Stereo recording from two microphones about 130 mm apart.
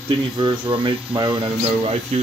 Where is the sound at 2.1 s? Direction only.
55° right (ahead or behind).